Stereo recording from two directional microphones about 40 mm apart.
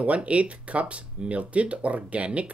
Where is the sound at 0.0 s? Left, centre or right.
Right.